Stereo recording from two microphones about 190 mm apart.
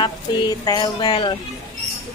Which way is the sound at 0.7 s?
20° left (ahead or behind).